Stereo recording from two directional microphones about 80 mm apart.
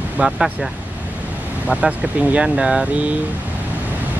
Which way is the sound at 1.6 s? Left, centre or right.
Centre.